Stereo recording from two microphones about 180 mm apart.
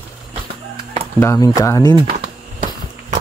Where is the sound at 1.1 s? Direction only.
15° left (ahead or behind).